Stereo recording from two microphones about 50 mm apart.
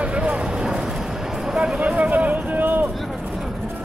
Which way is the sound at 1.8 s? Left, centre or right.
Right.